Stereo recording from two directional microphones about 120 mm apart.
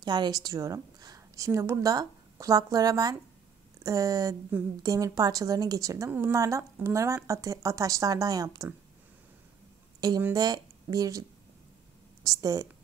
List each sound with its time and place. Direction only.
0.0 s speech: 35° right (ahead or behind)
9.9 s a sound: 35° right (ahead or behind)
10.3 s a woman's voice: 30° right (ahead or behind)